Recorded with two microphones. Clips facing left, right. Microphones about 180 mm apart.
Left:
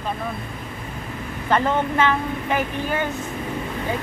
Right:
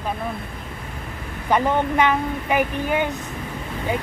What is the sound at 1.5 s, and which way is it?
Speech, 15° right (ahead or behind).